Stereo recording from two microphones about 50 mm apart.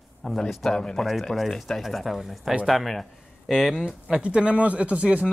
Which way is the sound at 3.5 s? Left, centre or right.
Centre.